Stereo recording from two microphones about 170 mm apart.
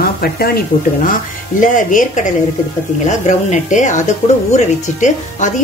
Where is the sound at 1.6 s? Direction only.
50° left (ahead or behind).